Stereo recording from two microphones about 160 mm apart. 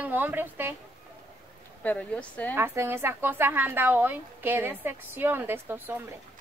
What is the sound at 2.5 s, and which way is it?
A woman's voice, 15° right (ahead or behind).